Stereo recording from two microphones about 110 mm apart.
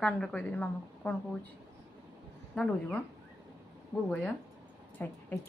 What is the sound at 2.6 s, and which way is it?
Speech, 5° left (ahead or behind).